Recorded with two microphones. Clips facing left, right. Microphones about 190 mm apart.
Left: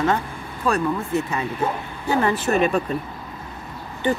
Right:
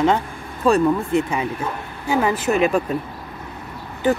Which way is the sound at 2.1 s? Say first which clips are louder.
Right 1 dB; 10° right (ahead or behind).